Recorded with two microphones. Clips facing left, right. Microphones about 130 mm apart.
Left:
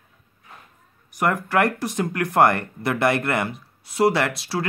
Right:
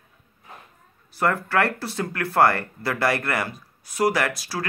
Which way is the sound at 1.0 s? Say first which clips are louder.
Left 1 dB; 15° left (ahead or behind).